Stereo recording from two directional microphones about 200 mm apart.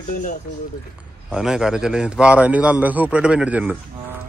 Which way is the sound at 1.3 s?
5° right (ahead or behind).